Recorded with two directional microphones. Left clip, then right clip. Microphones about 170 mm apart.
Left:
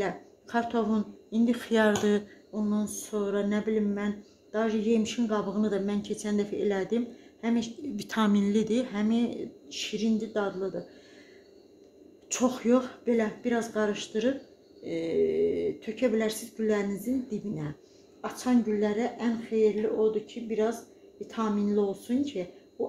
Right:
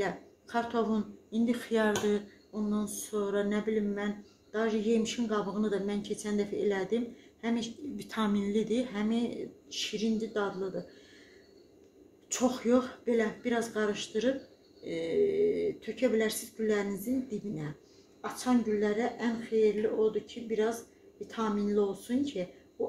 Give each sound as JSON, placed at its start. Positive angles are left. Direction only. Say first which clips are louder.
{"t": 0.0, "sound": "speech", "louder": "left 2 dB", "side_deg": 35}
{"t": 12.3, "sound": "speech", "louder": "left 2 dB", "side_deg": 35}